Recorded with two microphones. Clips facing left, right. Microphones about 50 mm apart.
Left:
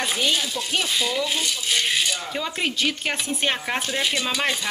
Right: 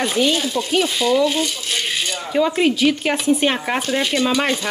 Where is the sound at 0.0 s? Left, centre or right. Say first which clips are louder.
Right 5 dB; centre.